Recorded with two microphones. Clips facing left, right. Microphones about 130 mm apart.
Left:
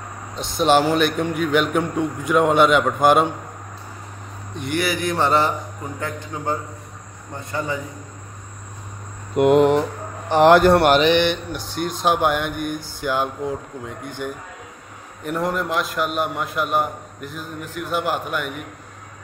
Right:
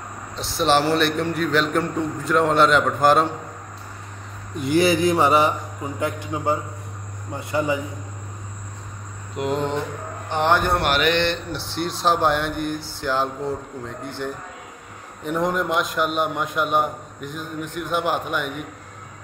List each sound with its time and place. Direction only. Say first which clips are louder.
0.6 s a man's voice: left 2 dB; 5° left (ahead or behind)
4.7 s a sound: right 5 dB; 25° right (ahead or behind)
5.1 s a man's voice: right 1 dB; centre (ahead or behind)
5.9 s a man's voice: right 4 dB; 15° right (ahead or behind)
9.3 s a sound: left 10 dB; 65° left (ahead or behind)
10.3 s speech: left 8 dB; 90° left
11.1 s a man's voice: left 3 dB; 5° left (ahead or behind)